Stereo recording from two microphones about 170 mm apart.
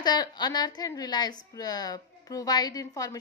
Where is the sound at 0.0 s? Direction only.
25° left (ahead or behind).